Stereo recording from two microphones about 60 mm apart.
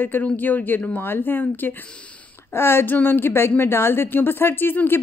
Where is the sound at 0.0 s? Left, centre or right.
Left.